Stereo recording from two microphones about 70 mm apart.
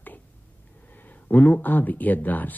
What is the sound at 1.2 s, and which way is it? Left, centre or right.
Speech, left.